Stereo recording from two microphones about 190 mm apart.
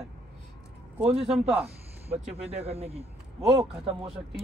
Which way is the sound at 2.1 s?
30° right (ahead or behind).